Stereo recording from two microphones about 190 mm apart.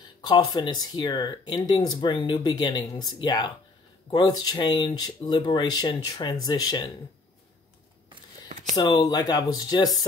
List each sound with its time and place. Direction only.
0.2 s speech: 20° left (ahead or behind)
8.7 s speech: 20° left (ahead or behind)